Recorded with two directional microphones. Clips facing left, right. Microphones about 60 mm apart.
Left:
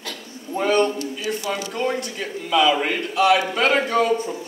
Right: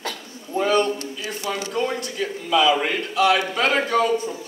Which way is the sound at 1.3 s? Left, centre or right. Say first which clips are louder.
Left 8 dB; centre.